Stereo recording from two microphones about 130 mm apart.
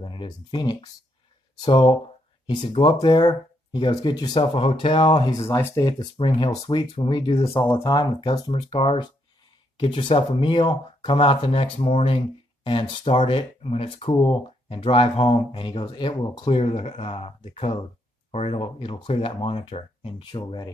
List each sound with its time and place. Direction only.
0.0 s speech: 40° left (ahead or behind)
4.4 s speech: 45° left (ahead or behind)
5.4 s speech: 20° left (ahead or behind)
6.1 s speech: 40° left (ahead or behind)
8.3 s speech: 40° left (ahead or behind)
16.6 s speech: 55° left (ahead or behind)
18.6 s speech: 40° left (ahead or behind)